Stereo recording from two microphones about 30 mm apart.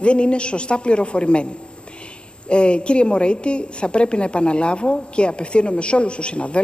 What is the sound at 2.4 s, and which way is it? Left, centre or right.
A woman's voice, left.